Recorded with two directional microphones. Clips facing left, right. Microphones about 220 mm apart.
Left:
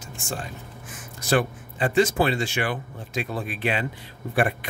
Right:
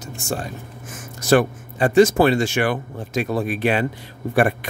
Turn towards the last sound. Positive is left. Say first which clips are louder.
# right 5 dB
turn(degrees=-45)  # may be behind; listen again after turning